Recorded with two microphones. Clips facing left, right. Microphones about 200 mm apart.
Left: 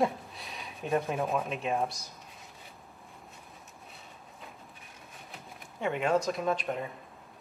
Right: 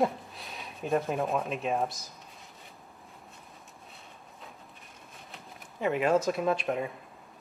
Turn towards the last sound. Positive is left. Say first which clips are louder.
# right 3 dB
turn(degrees=-5)  # may be behind; listen again after turning